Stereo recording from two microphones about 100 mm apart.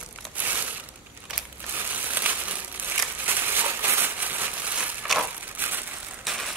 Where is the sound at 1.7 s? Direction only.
20° right (ahead or behind).